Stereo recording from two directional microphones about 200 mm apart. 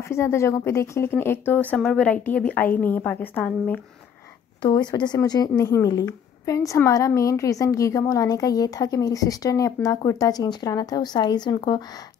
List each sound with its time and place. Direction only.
0.1 s a woman's voice: 15° left (ahead or behind)
4.6 s a woman's voice: 20° left (ahead or behind)